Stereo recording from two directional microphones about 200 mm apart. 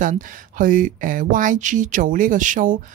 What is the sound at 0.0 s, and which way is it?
A woman's voice, 40° right (ahead or behind).